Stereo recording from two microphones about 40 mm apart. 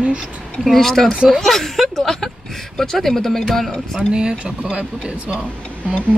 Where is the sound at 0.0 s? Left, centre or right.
Right.